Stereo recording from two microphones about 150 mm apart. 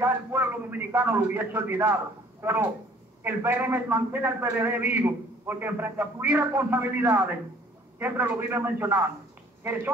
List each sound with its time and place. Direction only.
0.0 s a man's voice: 15° right (ahead or behind)